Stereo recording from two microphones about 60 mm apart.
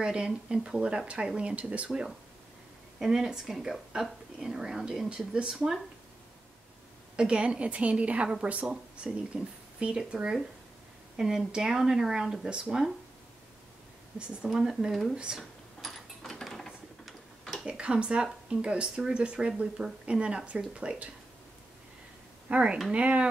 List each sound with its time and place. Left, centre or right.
0.0 s speech: centre
1.9 s speech: centre
7.2 s a woman's voice: centre
14.1 s speech: centre
15.3 s a sound: centre
17.6 s speech: centre
22.5 s a woman's voice: centre